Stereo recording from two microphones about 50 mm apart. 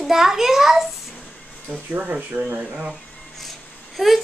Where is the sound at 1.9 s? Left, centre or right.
Right.